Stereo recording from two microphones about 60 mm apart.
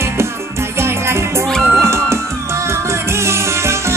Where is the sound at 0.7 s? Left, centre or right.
Right.